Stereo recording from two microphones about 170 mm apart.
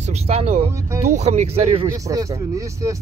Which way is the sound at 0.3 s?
35° right (ahead or behind).